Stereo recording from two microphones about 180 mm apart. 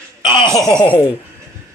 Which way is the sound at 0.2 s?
25° left (ahead or behind).